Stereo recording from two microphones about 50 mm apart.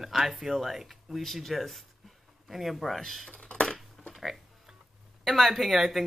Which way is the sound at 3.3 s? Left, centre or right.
Left.